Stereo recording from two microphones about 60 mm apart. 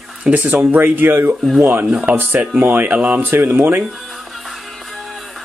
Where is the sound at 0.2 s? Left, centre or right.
Right.